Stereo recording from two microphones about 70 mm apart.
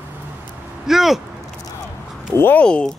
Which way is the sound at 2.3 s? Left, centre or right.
Left.